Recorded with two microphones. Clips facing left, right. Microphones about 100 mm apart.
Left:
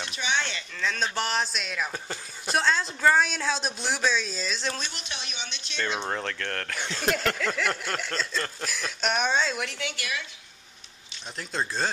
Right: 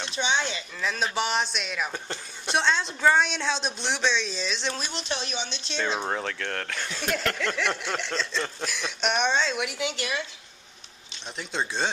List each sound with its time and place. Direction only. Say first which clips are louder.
0.1 s speech: right 3 dB; 25° right (ahead or behind)
0.4 s speech: right 1 dB; 15° right (ahead or behind); by 4.8 s centre (ahead or behind)
4.9 s speech: right 7 dB; 35° right (ahead or behind)
5.9 s speech: right 1 dB; 5° right (ahead or behind)
9.8 s speech: right 4 dB; 20° right (ahead or behind)
11.3 s speech: even; centre (ahead or behind)